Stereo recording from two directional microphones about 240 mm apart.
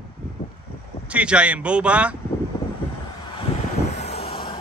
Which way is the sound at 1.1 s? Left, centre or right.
Centre.